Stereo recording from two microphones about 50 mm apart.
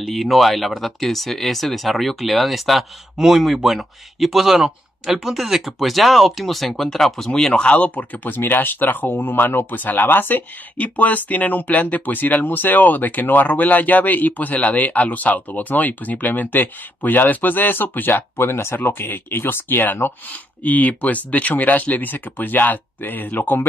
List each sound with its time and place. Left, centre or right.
0.0 s speech: centre; by 10.4 s left
10.8 s speech: left
20.6 s speech: left